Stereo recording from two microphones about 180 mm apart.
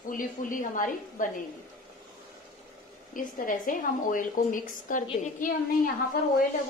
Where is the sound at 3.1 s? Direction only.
50° left (ahead or behind).